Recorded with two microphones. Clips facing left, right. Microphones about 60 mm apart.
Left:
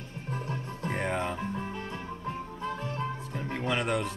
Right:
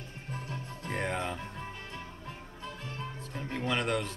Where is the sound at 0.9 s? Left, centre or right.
Centre.